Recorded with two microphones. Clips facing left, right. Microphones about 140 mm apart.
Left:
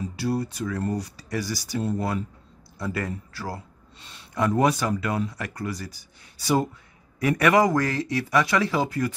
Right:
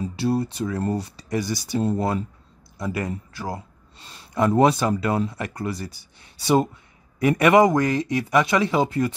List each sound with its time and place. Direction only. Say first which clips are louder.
0.1 s speech: right 4 dB; 25° right (ahead or behind)